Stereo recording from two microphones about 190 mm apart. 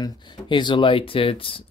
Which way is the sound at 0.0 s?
25° left (ahead or behind).